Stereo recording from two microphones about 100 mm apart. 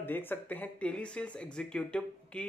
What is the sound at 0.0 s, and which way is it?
A man's voice, 20° left (ahead or behind).